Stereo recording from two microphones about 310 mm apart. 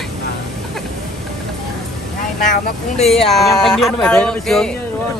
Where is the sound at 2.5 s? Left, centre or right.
Left.